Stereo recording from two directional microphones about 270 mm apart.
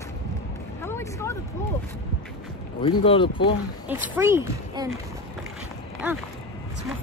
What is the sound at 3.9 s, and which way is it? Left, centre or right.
Speech, centre.